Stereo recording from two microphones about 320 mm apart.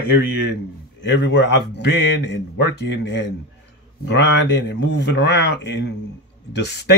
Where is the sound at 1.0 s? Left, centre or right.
Left.